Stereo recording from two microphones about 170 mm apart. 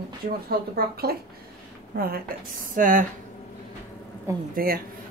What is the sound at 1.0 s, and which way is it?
A woman's voice, 65° right (ahead or behind).